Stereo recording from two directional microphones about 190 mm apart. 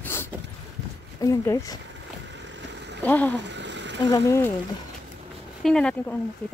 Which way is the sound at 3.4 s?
70° right (ahead or behind).